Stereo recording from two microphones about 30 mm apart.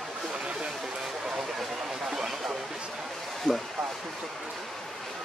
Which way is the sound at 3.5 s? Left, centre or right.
Right.